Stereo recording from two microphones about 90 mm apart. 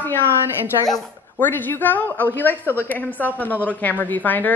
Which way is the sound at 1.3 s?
20° left (ahead or behind).